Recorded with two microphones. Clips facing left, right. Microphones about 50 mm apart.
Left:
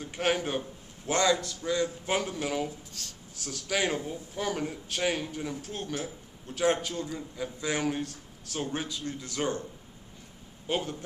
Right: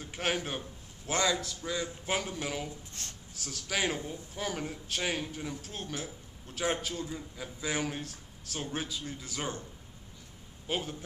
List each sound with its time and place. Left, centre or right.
0.0 s a man's voice: centre
3.0 s speech: right
3.3 s a man's voice: centre
10.7 s a man's voice: centre